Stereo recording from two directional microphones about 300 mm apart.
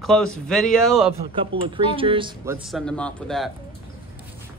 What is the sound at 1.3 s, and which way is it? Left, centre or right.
Speech, centre.